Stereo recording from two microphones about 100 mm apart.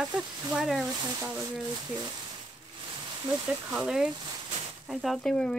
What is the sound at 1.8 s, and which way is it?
Speech, 45° right (ahead or behind).